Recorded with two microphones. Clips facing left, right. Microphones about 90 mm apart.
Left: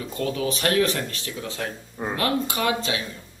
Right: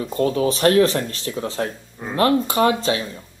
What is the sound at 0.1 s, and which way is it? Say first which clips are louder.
Speech: right 7 dB; 35° right (ahead or behind).